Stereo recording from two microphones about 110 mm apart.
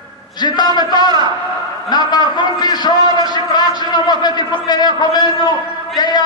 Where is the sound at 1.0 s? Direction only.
40° right (ahead or behind).